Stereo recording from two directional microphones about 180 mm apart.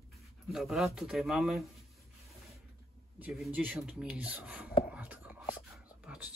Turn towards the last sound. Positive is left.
turn(degrees=-5)  # may be behind; listen again after turning